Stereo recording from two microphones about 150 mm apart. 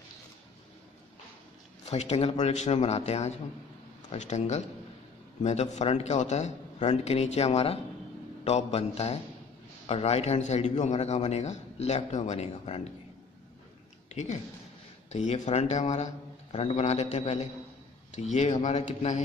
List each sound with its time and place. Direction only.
1.9 s a man's voice: 45° left (ahead or behind)
14.1 s a man's voice: 50° left (ahead or behind)